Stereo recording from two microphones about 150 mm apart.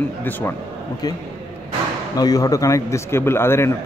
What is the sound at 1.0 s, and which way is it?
A man's voice, 25° left (ahead or behind).